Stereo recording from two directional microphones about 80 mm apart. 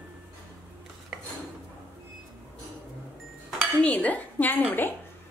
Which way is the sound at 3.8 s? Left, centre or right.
Centre.